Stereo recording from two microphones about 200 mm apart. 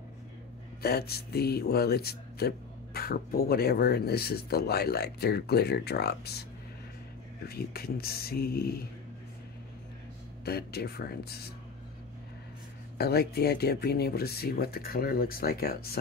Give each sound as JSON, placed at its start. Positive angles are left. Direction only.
{"t": 0.8, "sound": "speech", "side_deg": 50}
{"t": 7.4, "sound": "speech", "side_deg": 50}
{"t": 10.4, "sound": "speech", "side_deg": 50}
{"t": 12.9, "sound": "speech", "side_deg": 50}